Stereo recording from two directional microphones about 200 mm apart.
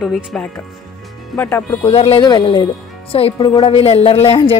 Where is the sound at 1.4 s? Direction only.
10° left (ahead or behind).